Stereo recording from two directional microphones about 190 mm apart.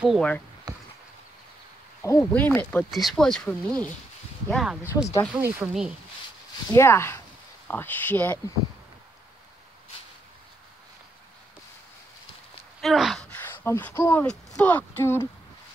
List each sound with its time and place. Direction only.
0.0 s speech: centre (ahead or behind)
0.7 s a sound: 20° right (ahead or behind)
2.1 s speech: 10° left (ahead or behind)
6.7 s speech: 15° left (ahead or behind)
12.8 s speech: centre (ahead or behind)